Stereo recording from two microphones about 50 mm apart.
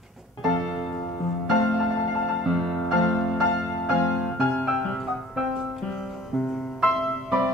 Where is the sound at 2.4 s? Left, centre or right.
Centre.